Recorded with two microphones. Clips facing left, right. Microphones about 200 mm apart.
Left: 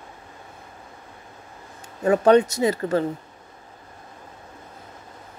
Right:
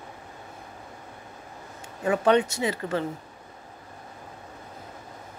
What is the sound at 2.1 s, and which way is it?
Speech, 40° left (ahead or behind).